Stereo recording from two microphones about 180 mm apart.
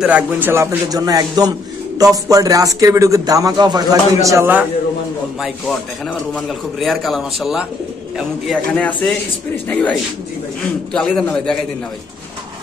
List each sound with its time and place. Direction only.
0.0 s speech: 10° right (ahead or behind)
6.3 s a man's voice: centre (ahead or behind)